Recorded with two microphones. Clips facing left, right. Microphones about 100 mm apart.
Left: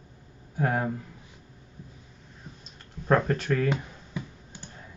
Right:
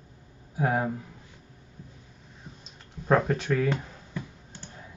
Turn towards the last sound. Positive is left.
turn(degrees=15)  # may be behind; listen again after turning